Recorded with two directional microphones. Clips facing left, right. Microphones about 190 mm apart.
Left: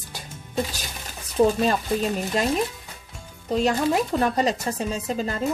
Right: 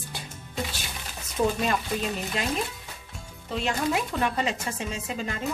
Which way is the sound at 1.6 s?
35° left (ahead or behind).